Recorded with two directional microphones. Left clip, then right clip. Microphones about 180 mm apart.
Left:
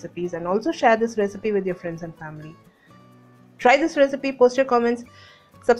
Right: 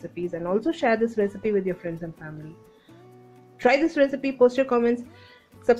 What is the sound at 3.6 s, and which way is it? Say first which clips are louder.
A woman's voice: left 3 dB; 20° right (ahead or behind).